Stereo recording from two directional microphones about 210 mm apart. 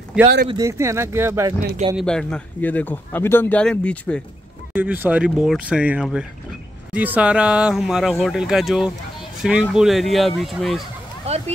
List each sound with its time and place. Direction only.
0.2 s speech: 5° right (ahead or behind)
0.5 s speech: 15° right (ahead or behind)
2.0 s speech: 5° left (ahead or behind)
4.7 s speech: 10° right (ahead or behind)
11.2 s speech: 30° right (ahead or behind)